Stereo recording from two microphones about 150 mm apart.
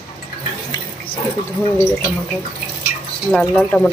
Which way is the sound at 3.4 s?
10° left (ahead or behind).